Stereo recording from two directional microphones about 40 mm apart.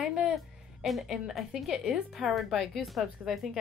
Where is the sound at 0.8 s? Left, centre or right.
Centre.